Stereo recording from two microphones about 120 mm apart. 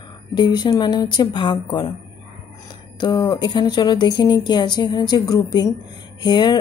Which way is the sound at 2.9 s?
35° left (ahead or behind).